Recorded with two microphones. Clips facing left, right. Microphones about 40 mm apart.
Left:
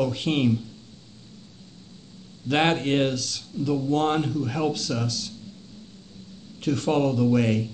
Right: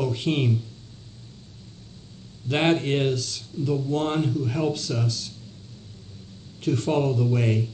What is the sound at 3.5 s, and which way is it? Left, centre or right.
Speech, centre.